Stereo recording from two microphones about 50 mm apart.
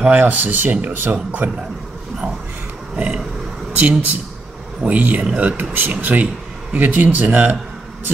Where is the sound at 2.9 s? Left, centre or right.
Right.